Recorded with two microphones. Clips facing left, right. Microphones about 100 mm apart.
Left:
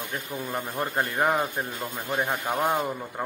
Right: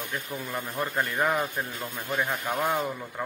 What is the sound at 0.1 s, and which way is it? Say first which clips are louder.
A man's voice: left 3 dB; 30° left (ahead or behind).